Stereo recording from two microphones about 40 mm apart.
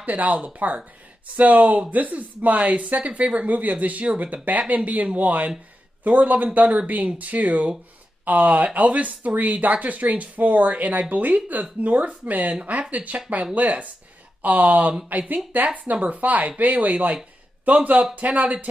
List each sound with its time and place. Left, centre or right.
0.0 s speech: right